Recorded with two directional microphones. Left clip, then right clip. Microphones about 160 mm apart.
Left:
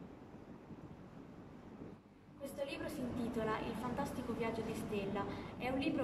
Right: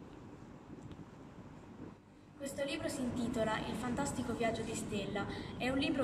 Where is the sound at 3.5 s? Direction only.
10° left (ahead or behind).